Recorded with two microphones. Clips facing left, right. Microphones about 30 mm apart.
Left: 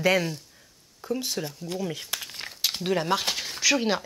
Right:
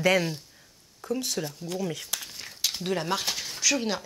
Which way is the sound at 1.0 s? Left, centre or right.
Centre.